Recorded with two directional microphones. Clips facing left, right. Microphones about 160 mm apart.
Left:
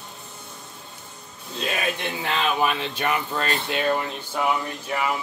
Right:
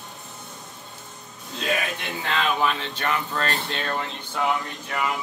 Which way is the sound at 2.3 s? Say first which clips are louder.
Even; 15° left (ahead or behind).